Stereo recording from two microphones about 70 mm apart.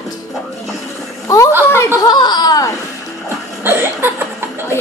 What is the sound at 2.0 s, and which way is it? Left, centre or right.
Speech, left.